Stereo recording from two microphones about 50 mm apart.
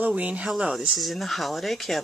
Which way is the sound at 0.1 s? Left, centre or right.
Right.